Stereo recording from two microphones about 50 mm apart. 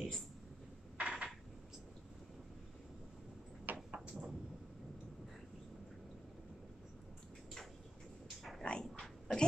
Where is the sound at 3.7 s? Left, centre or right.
Right.